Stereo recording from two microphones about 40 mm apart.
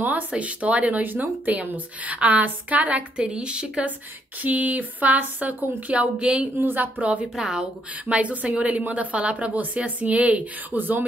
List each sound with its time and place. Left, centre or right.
0.3 s speech: right
3.2 s a woman's voice: right
4.4 s speech: right
7.3 s speech: centre
8.1 s speech: right
10.8 s speech: right